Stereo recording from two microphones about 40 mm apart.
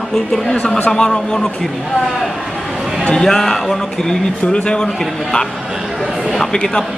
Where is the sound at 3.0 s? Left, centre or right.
Centre.